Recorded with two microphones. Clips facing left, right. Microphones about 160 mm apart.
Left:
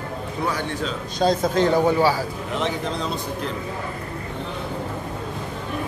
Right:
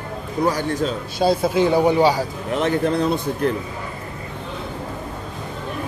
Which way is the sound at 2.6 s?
60° right (ahead or behind).